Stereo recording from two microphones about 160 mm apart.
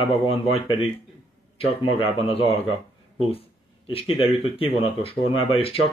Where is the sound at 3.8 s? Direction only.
35° left (ahead or behind).